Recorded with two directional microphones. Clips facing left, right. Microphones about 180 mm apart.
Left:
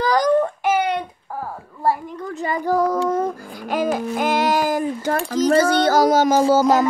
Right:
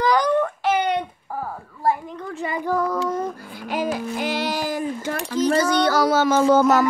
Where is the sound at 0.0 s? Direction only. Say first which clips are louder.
Left 2 dB; 35° left (ahead or behind).